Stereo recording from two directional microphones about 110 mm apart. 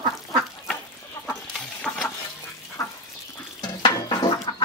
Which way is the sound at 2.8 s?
30° left (ahead or behind).